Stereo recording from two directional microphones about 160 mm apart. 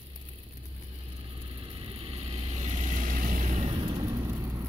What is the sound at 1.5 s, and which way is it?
Vehicle, 35° right (ahead or behind).